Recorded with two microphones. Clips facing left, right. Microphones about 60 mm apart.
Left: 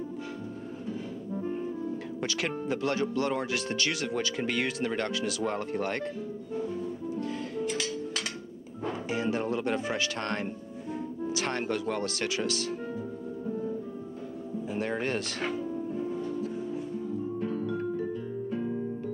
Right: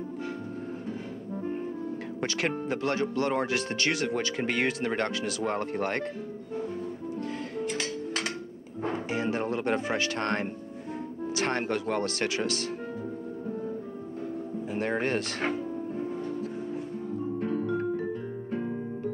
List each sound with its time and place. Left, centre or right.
2.1 s speech: right
7.6 s music: right
8.8 s speech: right
14.7 s music: right